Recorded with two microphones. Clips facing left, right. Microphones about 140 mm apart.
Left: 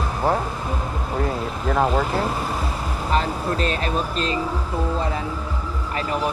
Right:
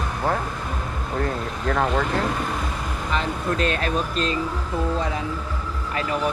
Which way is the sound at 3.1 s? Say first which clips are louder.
Left 2 dB; 35° left (ahead or behind).